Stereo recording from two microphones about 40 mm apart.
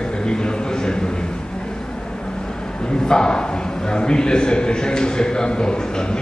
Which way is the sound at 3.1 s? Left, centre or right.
Centre.